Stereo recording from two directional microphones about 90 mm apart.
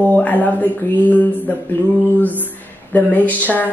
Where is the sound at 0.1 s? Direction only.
20° left (ahead or behind).